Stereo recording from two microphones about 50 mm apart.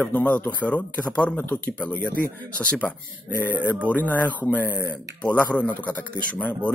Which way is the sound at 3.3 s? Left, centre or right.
Left.